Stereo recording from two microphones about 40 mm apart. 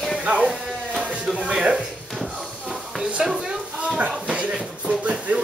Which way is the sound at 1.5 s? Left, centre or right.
Centre.